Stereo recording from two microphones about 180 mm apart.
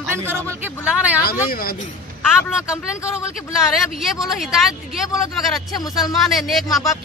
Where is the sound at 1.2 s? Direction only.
55° left (ahead or behind).